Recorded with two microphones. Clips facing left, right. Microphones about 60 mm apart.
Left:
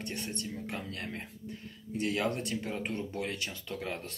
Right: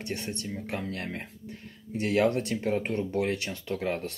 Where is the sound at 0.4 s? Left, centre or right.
Right.